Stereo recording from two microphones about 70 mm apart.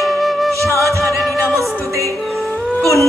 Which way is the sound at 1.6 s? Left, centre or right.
Right.